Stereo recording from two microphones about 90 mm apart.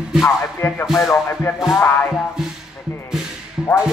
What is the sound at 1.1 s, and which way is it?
Speech, 25° left (ahead or behind).